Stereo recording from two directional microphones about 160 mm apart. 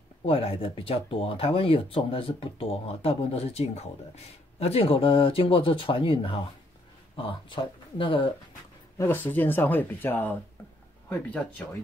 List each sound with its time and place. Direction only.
0.2 s speech: 35° left (ahead or behind)
8.9 s speech: 15° left (ahead or behind)